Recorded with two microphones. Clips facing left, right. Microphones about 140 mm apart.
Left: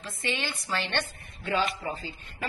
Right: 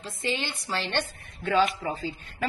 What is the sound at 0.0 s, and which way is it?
Speech, 25° right (ahead or behind).